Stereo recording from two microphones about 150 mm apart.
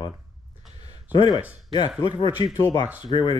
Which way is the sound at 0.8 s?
30° left (ahead or behind).